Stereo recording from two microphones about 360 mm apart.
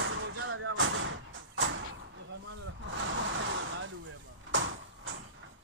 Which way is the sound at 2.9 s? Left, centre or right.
Right.